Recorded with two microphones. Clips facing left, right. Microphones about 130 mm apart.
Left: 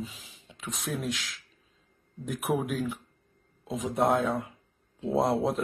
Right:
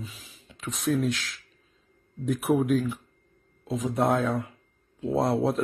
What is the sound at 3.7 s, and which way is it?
Speech, centre (ahead or behind).